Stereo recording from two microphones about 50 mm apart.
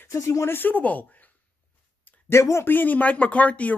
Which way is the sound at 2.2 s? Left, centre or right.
Left.